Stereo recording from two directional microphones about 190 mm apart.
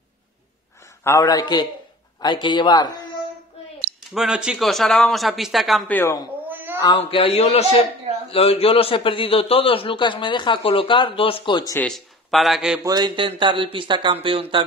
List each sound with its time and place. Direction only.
1.0 s a man's voice: 15° left (ahead or behind)
4.1 s speech: 5° right (ahead or behind); by 6.2 s 10° left (ahead or behind)
6.5 s a sound: 10° right (ahead or behind)
6.8 s a man's voice: 25° left (ahead or behind)
11.8 s a man's voice: centre (ahead or behind)
12.8 s speech: 20° right (ahead or behind)